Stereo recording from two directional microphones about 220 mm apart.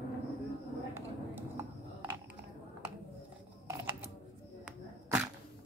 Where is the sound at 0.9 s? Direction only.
10° right (ahead or behind).